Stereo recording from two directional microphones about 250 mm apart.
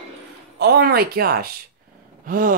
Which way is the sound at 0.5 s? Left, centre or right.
Right.